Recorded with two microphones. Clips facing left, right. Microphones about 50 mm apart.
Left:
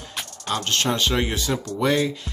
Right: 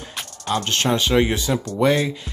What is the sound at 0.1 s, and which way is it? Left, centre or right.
Music, centre.